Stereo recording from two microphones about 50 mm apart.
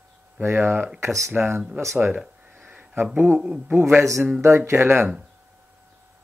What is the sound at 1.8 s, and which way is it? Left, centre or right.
Speech, right.